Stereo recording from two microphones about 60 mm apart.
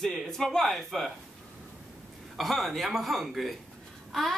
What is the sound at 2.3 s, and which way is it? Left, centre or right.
A woman's voice, centre.